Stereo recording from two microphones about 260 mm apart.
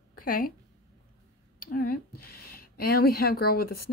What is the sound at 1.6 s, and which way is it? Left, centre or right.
Speech, left.